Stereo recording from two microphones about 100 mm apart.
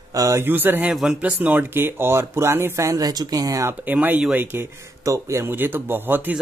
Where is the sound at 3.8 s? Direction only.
20° right (ahead or behind).